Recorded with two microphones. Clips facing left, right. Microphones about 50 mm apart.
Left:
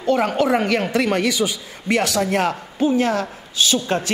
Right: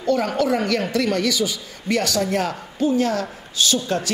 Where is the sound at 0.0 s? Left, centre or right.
Left.